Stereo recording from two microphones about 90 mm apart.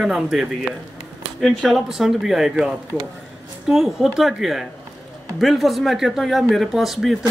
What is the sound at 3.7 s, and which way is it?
Speech, 5° right (ahead or behind).